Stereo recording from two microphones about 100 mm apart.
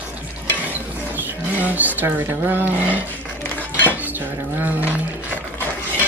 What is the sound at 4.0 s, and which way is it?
Cutlery, 20° right (ahead or behind).